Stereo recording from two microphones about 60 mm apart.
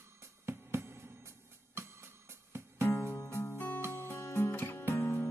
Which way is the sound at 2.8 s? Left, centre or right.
Left.